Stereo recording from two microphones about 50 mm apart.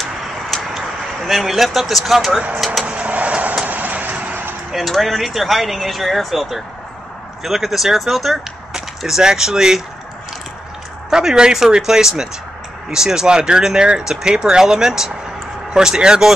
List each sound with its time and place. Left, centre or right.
0.0 s a sound: centre
2.8 s vehicle: right
4.7 s speech: centre
11.1 s speech: centre